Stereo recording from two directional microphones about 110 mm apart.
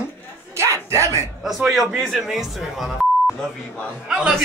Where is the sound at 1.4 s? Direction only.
Centre (ahead or behind).